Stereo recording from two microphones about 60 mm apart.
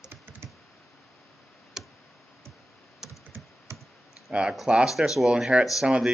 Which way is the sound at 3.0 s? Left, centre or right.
Centre.